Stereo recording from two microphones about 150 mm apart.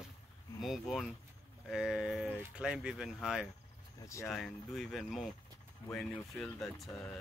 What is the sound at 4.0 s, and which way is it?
Speech, 20° left (ahead or behind).